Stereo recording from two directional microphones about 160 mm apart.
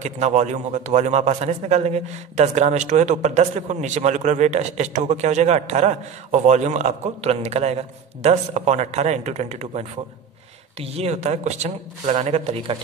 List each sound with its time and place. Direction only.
0.0 s a man's voice: 45° right (ahead or behind)